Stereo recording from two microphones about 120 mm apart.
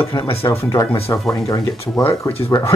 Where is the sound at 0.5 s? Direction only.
25° left (ahead or behind).